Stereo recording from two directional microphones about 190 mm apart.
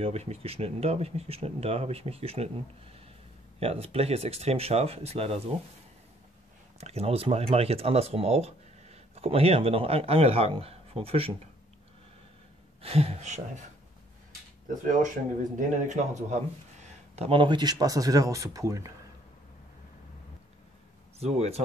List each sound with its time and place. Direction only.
0.0 s speech: 35° right (ahead or behind)
3.5 s speech: 30° right (ahead or behind)
6.8 s speech: 30° right (ahead or behind)
12.8 s speech: 30° right (ahead or behind)
14.8 s speech: 40° right (ahead or behind); by 18.9 s 15° right (ahead or behind)
21.2 s speech: 35° right (ahead or behind)